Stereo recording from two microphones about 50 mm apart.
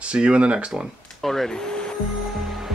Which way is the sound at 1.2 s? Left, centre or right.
Centre.